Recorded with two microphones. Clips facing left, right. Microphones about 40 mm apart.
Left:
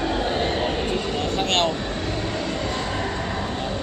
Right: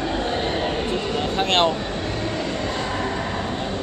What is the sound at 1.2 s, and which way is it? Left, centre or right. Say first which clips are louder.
Vehicle: right 3 dB; centre.